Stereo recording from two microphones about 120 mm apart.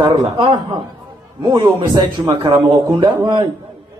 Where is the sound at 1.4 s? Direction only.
35° right (ahead or behind).